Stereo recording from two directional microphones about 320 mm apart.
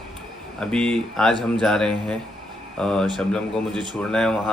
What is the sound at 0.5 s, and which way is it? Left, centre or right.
Speech, centre.